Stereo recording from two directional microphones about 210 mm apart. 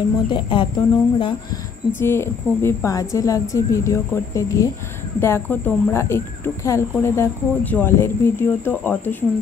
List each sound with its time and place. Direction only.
0.3 s speech: 20° left (ahead or behind)
2.0 s speech: 10° left (ahead or behind)